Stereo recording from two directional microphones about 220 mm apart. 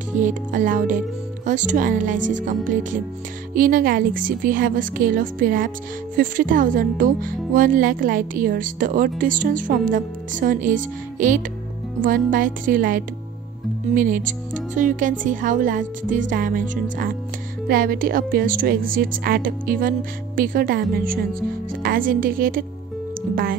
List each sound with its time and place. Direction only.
0.2 s speech: 35° right (ahead or behind)